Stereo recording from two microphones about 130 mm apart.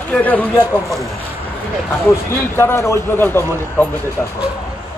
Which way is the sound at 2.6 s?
20° left (ahead or behind).